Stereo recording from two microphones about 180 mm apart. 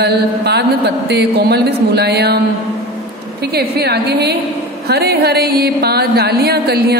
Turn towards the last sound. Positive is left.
turn(degrees=-60)  # may be behind; listen again after turning